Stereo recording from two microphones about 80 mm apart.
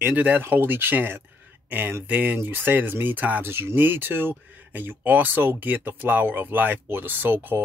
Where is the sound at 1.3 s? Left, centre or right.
Right.